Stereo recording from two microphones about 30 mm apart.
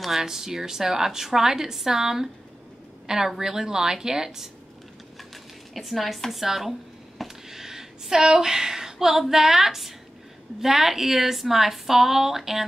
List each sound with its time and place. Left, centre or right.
0.2 s a woman's voice: centre
3.3 s a woman's voice: centre
5.3 s a sound: centre
6.4 s a woman's voice: centre
7.4 s a sound: centre
8.9 s a woman's voice: centre